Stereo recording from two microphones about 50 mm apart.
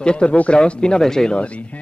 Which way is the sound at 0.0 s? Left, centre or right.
Centre.